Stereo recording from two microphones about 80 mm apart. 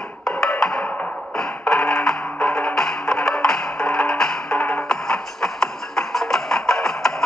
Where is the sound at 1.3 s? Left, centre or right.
Centre.